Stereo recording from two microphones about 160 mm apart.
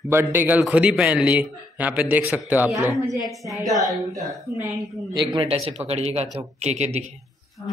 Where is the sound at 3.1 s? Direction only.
Centre (ahead or behind).